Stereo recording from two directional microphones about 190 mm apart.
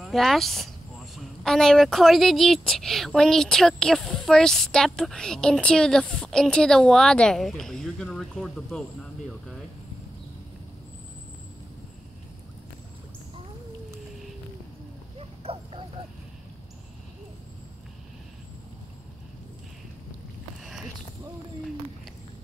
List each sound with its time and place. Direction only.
0.0 s speech: centre (ahead or behind)
15.1 s dog: 30° right (ahead or behind)
20.6 s a sound: centre (ahead or behind)